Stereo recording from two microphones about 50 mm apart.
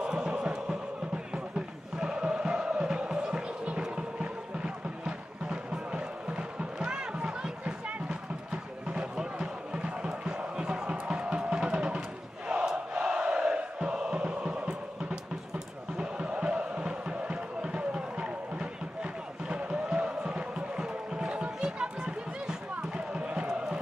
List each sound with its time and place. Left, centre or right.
0.0 s music: centre